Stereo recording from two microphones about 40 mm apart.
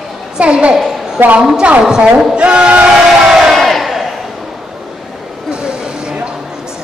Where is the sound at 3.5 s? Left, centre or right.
Centre.